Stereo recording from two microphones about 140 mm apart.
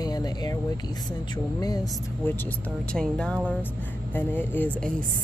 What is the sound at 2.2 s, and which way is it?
A woman's voice, 15° left (ahead or behind).